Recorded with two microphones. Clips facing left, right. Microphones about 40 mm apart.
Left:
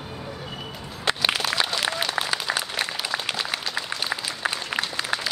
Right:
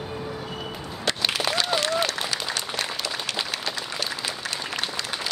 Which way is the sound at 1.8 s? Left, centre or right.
Centre.